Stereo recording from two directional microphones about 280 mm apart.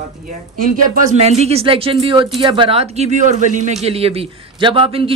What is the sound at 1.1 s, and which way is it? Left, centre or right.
A man's voice, right.